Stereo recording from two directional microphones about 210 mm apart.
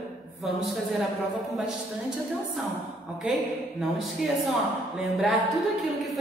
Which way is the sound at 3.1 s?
5° right (ahead or behind).